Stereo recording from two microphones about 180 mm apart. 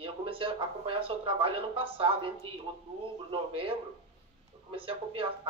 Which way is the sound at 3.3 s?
30° right (ahead or behind).